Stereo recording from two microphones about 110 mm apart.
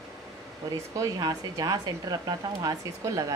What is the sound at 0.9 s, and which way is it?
Speech, 30° right (ahead or behind).